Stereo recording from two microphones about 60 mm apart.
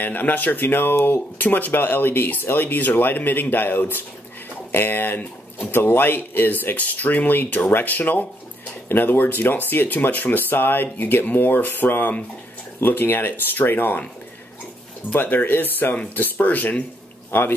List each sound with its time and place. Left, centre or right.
0.0 s speech: left
15.1 s speech: left
17.3 s speech: left